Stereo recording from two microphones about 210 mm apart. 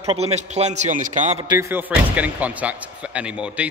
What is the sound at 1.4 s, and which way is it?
A man's voice, 15° right (ahead or behind).